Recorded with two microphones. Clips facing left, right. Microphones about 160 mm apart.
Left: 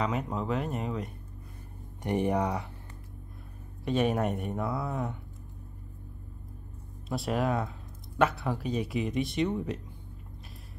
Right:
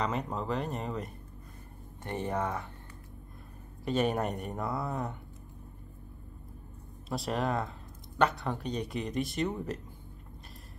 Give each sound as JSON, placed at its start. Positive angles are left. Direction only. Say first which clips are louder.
{"t": 0.0, "sound": "speech", "louder": "left 2 dB", "side_deg": 0}
{"t": 2.0, "sound": "speech", "louder": "left 5 dB", "side_deg": 15}
{"t": 3.8, "sound": "speech", "louder": "left 2 dB", "side_deg": 0}
{"t": 7.1, "sound": "speech", "louder": "left 3 dB", "side_deg": 0}